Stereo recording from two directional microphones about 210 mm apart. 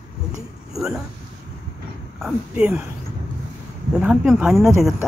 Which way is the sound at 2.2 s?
Centre (ahead or behind).